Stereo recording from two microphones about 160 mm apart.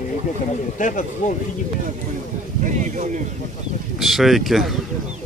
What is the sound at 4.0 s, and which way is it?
Speech, centre (ahead or behind).